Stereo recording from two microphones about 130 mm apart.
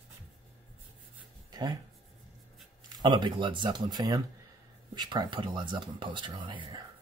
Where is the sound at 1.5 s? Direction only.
30° right (ahead or behind).